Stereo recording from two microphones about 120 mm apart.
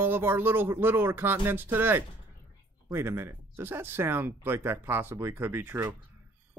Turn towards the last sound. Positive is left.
turn(degrees=-15)  # may be behind; listen again after turning